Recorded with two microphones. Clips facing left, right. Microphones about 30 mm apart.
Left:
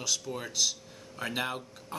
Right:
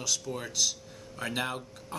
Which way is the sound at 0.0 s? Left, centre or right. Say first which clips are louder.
Even; centre.